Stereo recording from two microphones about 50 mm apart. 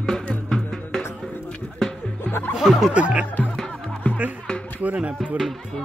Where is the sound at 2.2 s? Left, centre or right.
Left.